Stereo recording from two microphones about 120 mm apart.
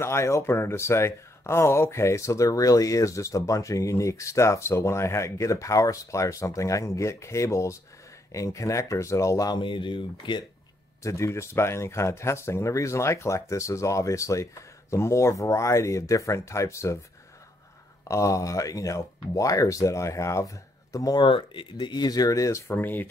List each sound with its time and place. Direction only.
0.0 s speech: 25° left (ahead or behind); by 10.4 s 40° left (ahead or behind)
11.0 s speech: 25° left (ahead or behind)
18.0 s speech: 25° left (ahead or behind)
21.2 s speech: 45° left (ahead or behind); by 23.0 s 15° left (ahead or behind)